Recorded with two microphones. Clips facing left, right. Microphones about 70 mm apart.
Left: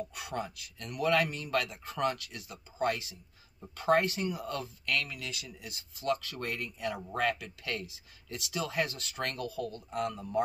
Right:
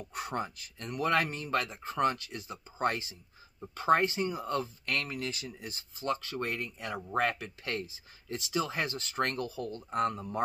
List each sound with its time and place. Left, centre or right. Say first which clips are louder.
0.1 s speech: right 2 dB; right
3.6 s speech: right 1 dB; right
6.4 s speech: even; right